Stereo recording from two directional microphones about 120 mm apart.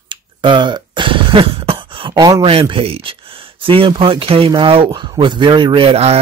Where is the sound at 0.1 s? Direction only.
40° right (ahead or behind).